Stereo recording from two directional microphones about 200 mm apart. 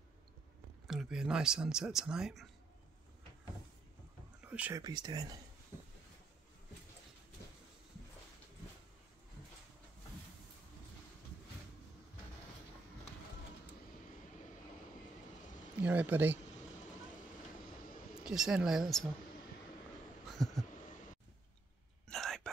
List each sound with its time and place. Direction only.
0.8 s speech: centre (ahead or behind)
4.4 s whispering: 5° right (ahead or behind)
4.8 s speech: 20° right (ahead or behind)
15.8 s speech: 10° right (ahead or behind)
18.2 s speech: centre (ahead or behind)
20.4 s a sound: centre (ahead or behind)
20.7 s a sound: 40° left (ahead or behind)
22.0 s whispering: centre (ahead or behind)